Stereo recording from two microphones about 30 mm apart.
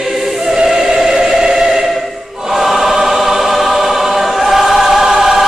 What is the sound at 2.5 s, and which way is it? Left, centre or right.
Choir, centre.